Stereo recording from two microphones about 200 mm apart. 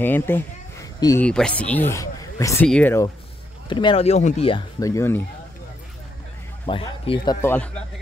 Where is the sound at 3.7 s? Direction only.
25° left (ahead or behind).